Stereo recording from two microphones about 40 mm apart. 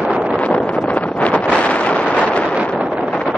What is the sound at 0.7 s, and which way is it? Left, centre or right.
Wind noise, left.